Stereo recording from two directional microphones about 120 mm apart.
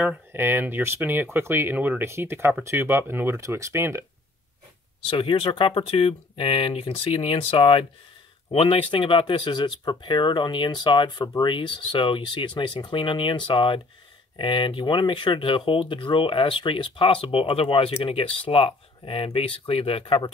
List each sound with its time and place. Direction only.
0.3 s speech: 15° right (ahead or behind)
5.0 s speech: 45° left (ahead or behind)